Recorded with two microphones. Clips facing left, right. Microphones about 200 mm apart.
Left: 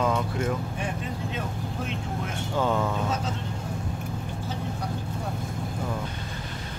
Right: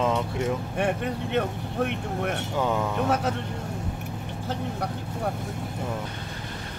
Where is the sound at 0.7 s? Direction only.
65° right (ahead or behind).